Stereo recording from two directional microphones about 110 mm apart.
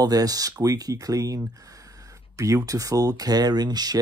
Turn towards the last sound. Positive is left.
turn(degrees=-40)  # may be behind; listen again after turning